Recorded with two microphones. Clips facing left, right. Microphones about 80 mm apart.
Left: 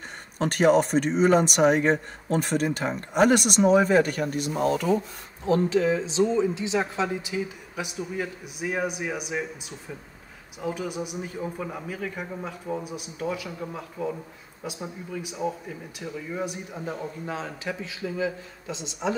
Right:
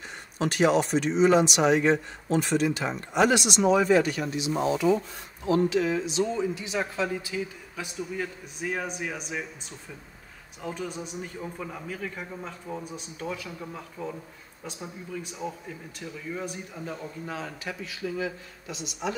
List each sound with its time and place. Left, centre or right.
0.4 s speech: left
5.5 s speech: left; by 9.4 s centre
10.6 s a man's voice: centre
16.8 s speech: left